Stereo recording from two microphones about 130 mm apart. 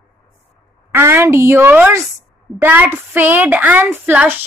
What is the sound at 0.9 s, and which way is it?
A woman's voice, 20° right (ahead or behind).